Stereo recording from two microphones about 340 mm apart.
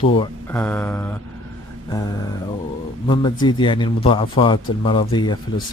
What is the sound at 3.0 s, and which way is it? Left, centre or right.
Speech, centre.